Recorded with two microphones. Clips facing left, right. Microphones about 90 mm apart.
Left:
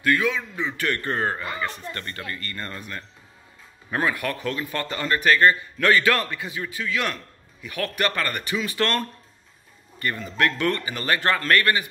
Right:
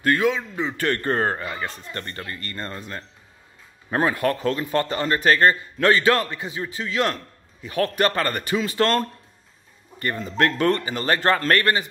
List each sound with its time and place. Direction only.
0.0 s a man's voice: 35° right (ahead or behind)